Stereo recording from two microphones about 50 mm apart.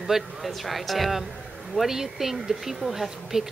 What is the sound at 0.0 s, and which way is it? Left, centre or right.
A woman's voice, centre.